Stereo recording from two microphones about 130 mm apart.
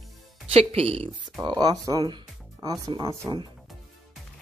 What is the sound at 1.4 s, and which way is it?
Speech, 35° right (ahead or behind).